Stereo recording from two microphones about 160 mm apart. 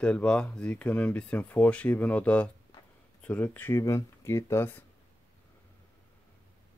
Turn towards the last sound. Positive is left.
turn(degrees=15)  # may be behind; listen again after turning